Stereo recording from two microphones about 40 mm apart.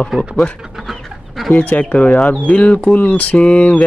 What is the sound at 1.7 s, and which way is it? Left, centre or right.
Speech, left.